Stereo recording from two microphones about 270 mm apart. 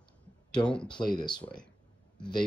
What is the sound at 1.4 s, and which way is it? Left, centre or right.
Speech, centre.